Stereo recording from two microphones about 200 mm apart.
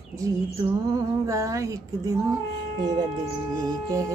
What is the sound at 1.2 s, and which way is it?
Female singing, 15° right (ahead or behind).